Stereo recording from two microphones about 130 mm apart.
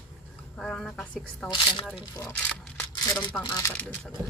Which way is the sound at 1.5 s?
35° left (ahead or behind).